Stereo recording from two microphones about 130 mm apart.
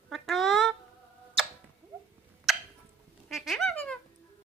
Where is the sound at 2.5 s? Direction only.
Centre (ahead or behind).